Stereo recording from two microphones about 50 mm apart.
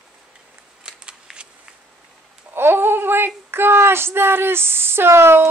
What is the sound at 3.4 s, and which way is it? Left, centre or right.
Speech, right.